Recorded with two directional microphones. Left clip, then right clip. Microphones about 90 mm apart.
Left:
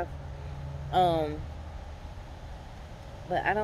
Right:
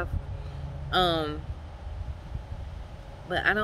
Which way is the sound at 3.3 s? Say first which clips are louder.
Right 2 dB; 45° right (ahead or behind).